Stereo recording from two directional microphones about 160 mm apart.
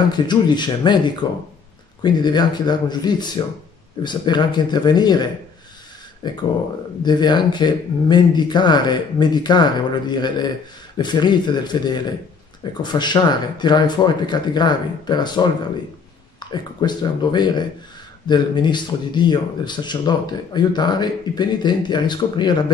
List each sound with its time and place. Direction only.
0.1 s speech: 25° left (ahead or behind)